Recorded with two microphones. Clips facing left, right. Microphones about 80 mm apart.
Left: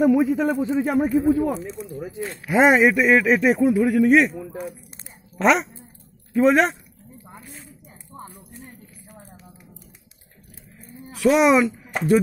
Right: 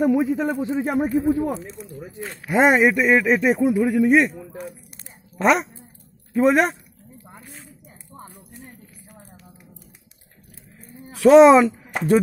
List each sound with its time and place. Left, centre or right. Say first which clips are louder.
0.0 s a man's voice: left 2 dB; centre
0.7 s speech: left 1 dB; centre
2.4 s a man's voice: even; centre
4.4 s speech: left 3 dB; centre
5.4 s a man's voice: even; centre
11.1 s speech: right 6 dB; right